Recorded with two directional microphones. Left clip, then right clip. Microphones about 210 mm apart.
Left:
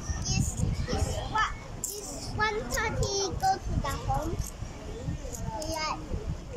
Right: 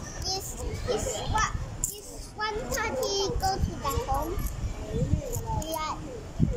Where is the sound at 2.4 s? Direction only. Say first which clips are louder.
Left 1 dB; 5° right (ahead or behind).